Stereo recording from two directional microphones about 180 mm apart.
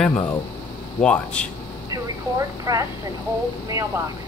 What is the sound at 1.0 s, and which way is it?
Speech, 5° left (ahead or behind).